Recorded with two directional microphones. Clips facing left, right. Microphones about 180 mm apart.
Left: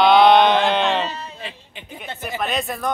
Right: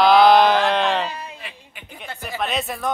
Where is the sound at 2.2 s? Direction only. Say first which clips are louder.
Left 1 dB; centre (ahead or behind).